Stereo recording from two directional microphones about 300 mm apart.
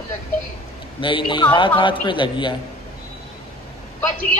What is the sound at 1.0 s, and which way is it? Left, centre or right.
A man's voice, centre.